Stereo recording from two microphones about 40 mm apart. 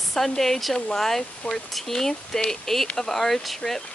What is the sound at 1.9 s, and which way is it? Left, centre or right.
A woman's voice, centre.